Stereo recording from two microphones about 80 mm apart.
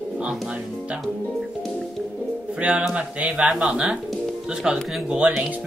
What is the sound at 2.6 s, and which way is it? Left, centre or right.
Speech, centre.